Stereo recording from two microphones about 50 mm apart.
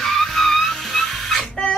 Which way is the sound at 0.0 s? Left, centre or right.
Centre.